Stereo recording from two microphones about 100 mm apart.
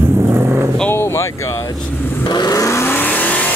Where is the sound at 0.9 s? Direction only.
25° left (ahead or behind).